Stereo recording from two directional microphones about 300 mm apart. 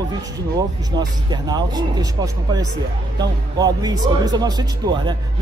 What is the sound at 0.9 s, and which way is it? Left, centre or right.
Speech, centre.